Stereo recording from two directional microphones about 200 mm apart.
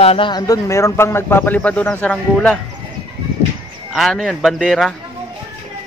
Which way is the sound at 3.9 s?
Centre (ahead or behind).